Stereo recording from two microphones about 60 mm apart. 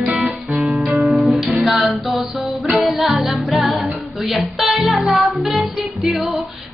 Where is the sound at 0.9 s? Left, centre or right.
Centre.